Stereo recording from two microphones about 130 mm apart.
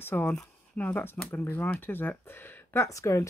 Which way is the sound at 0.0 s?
15° left (ahead or behind).